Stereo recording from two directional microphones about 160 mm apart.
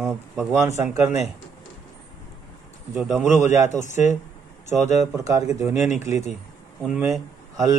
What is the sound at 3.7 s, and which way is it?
Speech, 50° left (ahead or behind).